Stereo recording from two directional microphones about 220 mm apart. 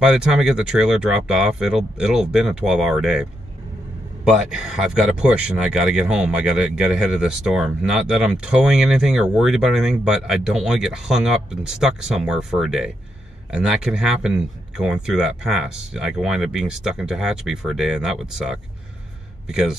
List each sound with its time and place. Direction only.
0.0 s a man's voice: 5° right (ahead or behind)